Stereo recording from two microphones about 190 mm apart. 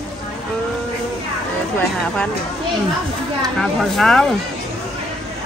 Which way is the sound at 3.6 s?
Centre (ahead or behind).